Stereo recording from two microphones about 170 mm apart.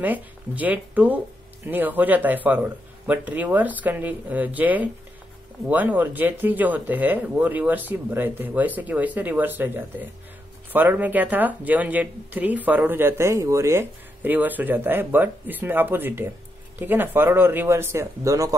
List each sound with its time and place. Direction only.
0.0 s speech: 10° right (ahead or behind)